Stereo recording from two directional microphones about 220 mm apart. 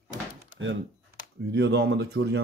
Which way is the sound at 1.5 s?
50° right (ahead or behind).